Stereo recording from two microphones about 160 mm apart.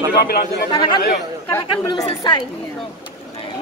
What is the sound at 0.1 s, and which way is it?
Speech, 75° left (ahead or behind).